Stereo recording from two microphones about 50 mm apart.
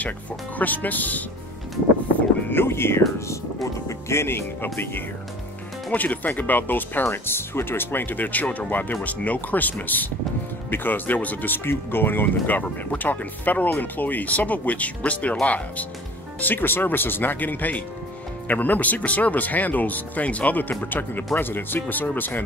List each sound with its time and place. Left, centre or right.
0.6 s speech: left
2.5 s speech: left
5.9 s speech: left
7.1 s speech: left
16.3 s speech: left